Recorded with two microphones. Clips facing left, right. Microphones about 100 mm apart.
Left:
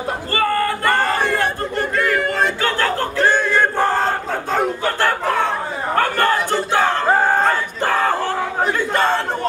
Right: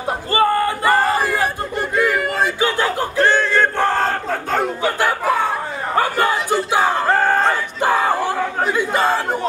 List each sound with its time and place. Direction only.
0.3 s a sound: 20° right (ahead or behind)
0.8 s crowd: 5° right (ahead or behind)
3.3 s battle cry: 10° left (ahead or behind)
4.8 s chicken: 10° right (ahead or behind)
5.9 s a sound: 10° right (ahead or behind)
7.1 s crowd: 10° left (ahead or behind)
7.8 s battle cry: 10° right (ahead or behind)
8.7 s crowd: 5° right (ahead or behind)